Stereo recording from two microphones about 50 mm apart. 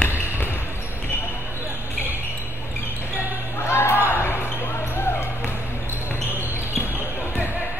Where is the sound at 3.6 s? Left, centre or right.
Left.